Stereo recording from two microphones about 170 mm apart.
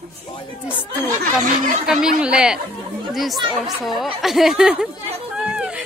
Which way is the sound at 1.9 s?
5° right (ahead or behind).